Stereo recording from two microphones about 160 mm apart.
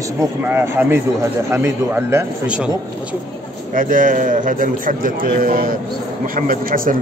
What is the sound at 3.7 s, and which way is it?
A man's voice, 55° right (ahead or behind).